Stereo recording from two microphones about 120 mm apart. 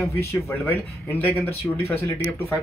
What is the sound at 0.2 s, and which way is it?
Speech, 20° left (ahead or behind).